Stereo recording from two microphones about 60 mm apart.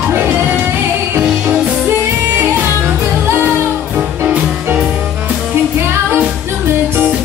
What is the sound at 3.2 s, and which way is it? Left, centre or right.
Music, right.